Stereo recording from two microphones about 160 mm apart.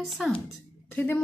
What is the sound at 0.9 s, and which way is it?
Speech, 10° left (ahead or behind).